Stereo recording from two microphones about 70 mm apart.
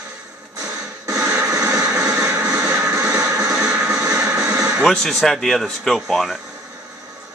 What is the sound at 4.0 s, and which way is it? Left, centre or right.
Music, right.